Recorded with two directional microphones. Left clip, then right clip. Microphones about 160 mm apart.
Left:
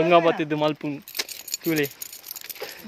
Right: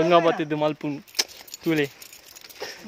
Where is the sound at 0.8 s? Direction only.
10° right (ahead or behind).